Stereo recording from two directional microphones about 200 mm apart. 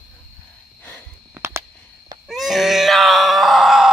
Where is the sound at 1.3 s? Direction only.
15° right (ahead or behind).